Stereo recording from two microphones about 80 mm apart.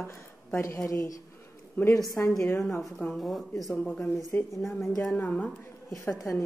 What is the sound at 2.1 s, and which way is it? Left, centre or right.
Speech, left.